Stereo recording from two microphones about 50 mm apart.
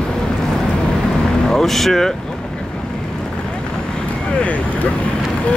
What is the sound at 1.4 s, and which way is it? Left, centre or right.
Speech, centre.